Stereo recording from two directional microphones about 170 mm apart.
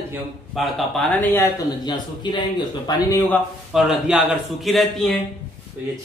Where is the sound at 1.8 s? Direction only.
25° left (ahead or behind).